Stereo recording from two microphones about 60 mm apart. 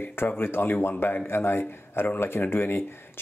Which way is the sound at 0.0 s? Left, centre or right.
Left.